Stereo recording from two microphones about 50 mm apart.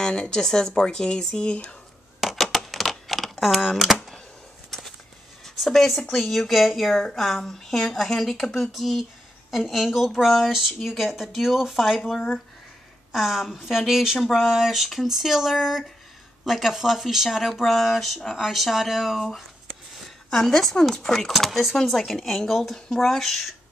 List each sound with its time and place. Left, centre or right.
0.0 s speech: centre
2.1 s typewriter: centre
4.6 s a sound: centre
5.9 s speech: centre
13.1 s speech: centre
20.2 s speech: centre